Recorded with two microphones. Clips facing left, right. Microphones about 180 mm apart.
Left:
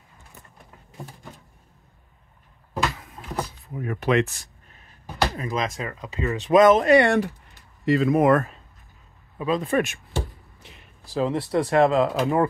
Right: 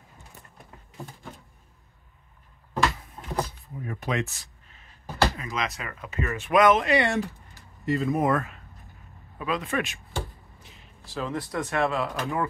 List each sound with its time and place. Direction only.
3.7 s speech: 75° left (ahead or behind)
5.3 s speech: 40° left (ahead or behind)
5.9 s speech: 20° left (ahead or behind)
6.4 s speech: 30° left (ahead or behind); by 7.2 s 50° left (ahead or behind)
7.8 s speech: 90° left
9.4 s speech: 30° left (ahead or behind)